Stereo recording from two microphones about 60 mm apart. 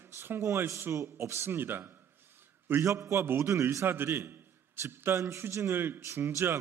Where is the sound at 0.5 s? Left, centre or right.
Right.